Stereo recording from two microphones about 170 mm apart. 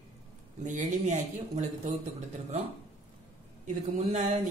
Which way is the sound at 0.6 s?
45° right (ahead or behind).